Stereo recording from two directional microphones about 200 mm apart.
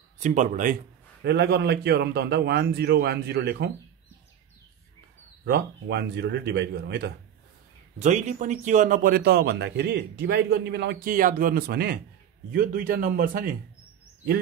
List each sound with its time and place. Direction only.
0.2 s a man's voice: 40° right (ahead or behind)
1.2 s a man's voice: 55° right (ahead or behind)
5.4 s a man's voice: 55° right (ahead or behind)
8.0 s speech: 35° right (ahead or behind)